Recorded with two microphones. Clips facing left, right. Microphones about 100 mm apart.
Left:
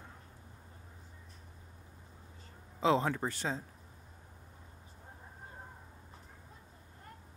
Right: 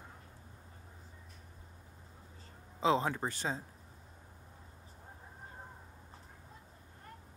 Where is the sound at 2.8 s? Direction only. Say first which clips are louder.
Left 1 dB; 20° right (ahead or behind).